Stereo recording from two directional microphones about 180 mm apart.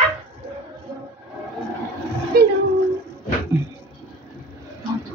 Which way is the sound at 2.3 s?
55° right (ahead or behind).